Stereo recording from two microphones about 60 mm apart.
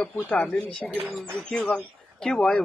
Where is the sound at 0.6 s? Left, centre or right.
Centre.